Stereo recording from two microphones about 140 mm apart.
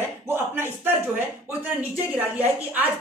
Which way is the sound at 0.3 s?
15° right (ahead or behind).